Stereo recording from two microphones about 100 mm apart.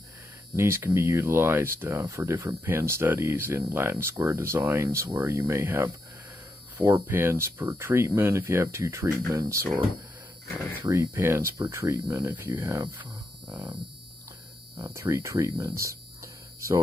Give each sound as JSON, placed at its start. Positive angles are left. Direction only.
{"t": 0.6, "sound": "speech", "side_deg": -25}
{"t": 6.9, "sound": "speech", "side_deg": -25}
{"t": 10.8, "sound": "speech", "side_deg": -25}
{"t": 13.5, "sound": "mains hum", "side_deg": -15}
{"t": 14.8, "sound": "speech", "side_deg": -30}